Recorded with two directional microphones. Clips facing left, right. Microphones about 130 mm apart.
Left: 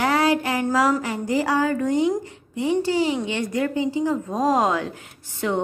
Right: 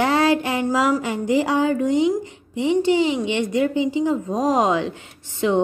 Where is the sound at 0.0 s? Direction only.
25° right (ahead or behind).